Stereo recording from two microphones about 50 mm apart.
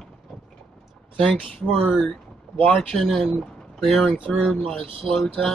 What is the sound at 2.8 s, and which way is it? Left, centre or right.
Speech, centre.